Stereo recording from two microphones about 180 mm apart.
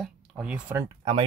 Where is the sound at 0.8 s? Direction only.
20° right (ahead or behind).